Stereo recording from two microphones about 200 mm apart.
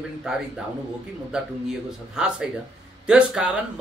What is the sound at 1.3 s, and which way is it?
A man's voice, 5° right (ahead or behind).